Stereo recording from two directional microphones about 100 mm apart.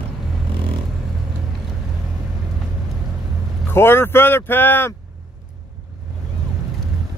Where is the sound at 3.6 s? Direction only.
25° left (ahead or behind).